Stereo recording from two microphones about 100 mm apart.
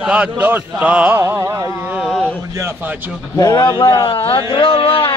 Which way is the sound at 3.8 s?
50° left (ahead or behind).